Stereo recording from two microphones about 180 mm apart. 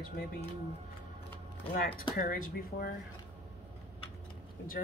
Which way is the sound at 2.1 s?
55° left (ahead or behind).